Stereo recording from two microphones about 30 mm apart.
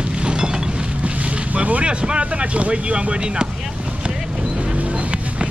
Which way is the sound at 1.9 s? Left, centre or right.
Right.